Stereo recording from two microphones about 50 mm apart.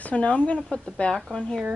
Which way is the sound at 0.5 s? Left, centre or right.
Centre.